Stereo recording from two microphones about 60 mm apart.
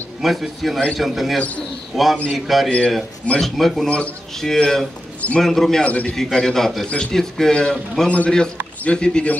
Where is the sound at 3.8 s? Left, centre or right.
Left.